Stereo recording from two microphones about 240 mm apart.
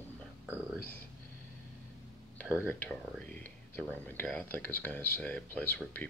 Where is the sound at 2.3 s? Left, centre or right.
Centre.